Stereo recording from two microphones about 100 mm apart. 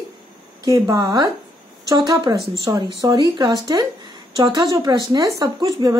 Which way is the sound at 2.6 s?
40° right (ahead or behind).